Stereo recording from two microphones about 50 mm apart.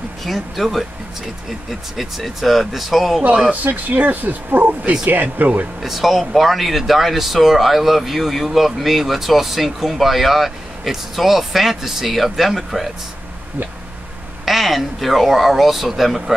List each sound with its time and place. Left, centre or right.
0.2 s speech: centre
3.6 s speech: right
5.8 s speech: centre
14.4 s speech: centre